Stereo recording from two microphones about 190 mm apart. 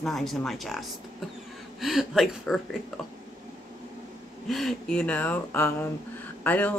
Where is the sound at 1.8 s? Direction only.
Centre (ahead or behind).